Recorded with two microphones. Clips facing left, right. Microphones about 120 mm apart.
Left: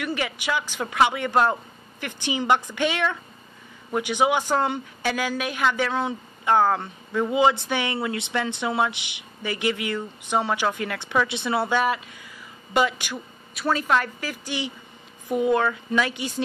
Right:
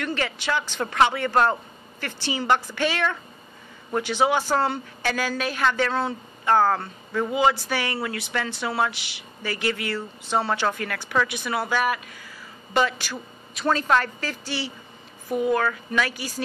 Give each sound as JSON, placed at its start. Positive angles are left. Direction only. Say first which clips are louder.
{"t": 0.0, "sound": "a woman's voice", "louder": "even", "side_deg": 15}